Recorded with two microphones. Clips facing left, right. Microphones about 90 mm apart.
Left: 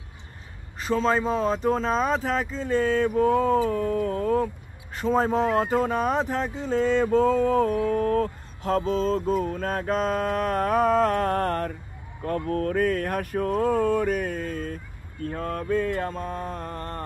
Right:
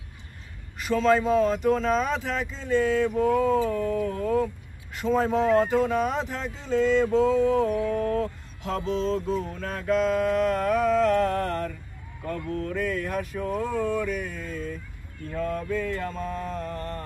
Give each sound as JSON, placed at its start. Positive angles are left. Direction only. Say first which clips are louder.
{"t": 0.7, "sound": "speech", "louder": "right 1 dB", "side_deg": 35}